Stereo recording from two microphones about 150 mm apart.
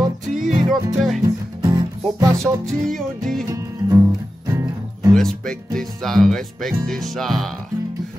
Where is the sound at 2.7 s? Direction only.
Centre (ahead or behind).